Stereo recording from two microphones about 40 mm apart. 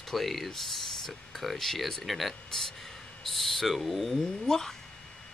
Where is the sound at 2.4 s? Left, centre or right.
Centre.